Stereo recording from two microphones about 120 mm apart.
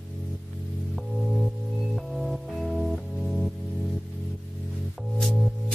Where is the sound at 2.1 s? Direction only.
Centre (ahead or behind).